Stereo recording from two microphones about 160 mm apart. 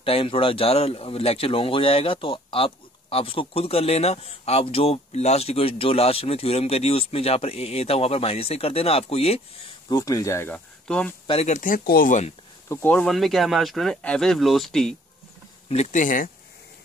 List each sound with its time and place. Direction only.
0.0 s speech: 35° left (ahead or behind); by 11.1 s 5° left (ahead or behind)
11.2 s speech: 40° left (ahead or behind)
12.6 s speech: 15° left (ahead or behind)
15.7 s speech: 45° left (ahead or behind)